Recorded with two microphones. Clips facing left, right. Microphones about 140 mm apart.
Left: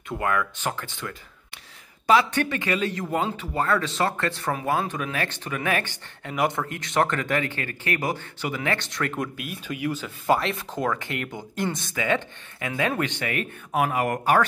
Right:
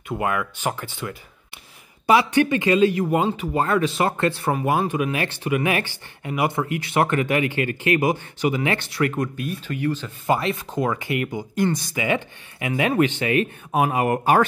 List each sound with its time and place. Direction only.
0.1 s speech: 15° right (ahead or behind); by 10.1 s 10° left (ahead or behind)
10.2 s speech: centre (ahead or behind)
11.9 s speech: 15° right (ahead or behind)